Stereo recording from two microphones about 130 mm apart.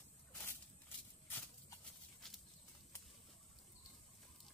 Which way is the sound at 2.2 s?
5° left (ahead or behind).